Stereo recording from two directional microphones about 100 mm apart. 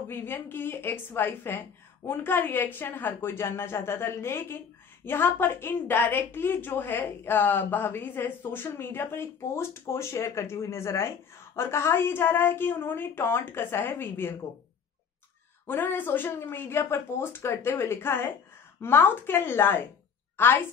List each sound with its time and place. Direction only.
0.1 s a woman's voice: 20° left (ahead or behind)
15.6 s a woman's voice: 20° left (ahead or behind)